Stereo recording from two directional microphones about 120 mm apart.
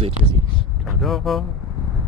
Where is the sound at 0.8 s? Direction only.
Centre (ahead or behind).